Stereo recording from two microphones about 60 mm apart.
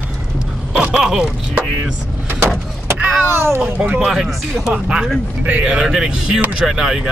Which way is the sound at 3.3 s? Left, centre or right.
Right.